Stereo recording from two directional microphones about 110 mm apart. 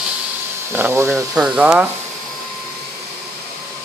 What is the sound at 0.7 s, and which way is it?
Speech, 20° right (ahead or behind).